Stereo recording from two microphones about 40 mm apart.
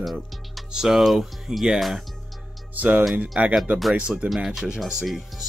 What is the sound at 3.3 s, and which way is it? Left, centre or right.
Speech, right.